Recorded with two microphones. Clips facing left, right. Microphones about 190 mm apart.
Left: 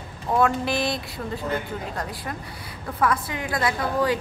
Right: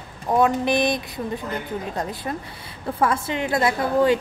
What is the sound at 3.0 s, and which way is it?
A woman's voice, 25° right (ahead or behind).